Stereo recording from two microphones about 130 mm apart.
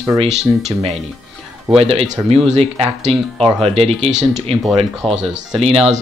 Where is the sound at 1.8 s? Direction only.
50° right (ahead or behind).